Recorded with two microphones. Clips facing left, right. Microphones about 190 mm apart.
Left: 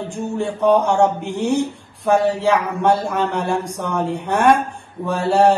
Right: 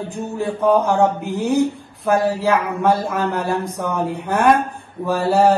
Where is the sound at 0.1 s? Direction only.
Centre (ahead or behind).